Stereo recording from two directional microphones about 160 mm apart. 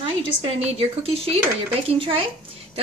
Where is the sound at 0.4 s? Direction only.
35° right (ahead or behind).